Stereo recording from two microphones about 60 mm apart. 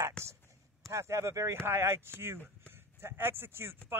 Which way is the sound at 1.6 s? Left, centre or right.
Right.